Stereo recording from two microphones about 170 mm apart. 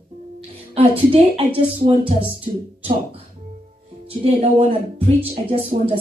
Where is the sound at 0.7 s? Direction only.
35° right (ahead or behind).